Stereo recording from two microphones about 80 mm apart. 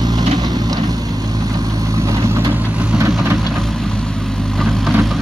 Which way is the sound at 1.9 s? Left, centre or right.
Right.